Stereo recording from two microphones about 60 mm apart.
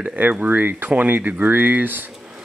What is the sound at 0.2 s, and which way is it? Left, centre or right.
Speech, right.